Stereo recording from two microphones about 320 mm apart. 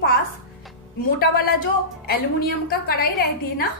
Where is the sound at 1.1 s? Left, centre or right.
Left.